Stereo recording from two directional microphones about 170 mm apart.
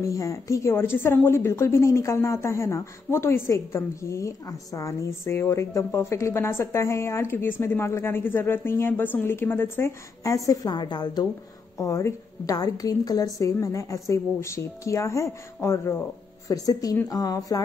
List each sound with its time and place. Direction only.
0.0 s a woman's voice: 20° left (ahead or behind)